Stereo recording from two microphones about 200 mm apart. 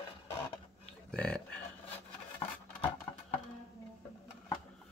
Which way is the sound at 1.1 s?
5° left (ahead or behind).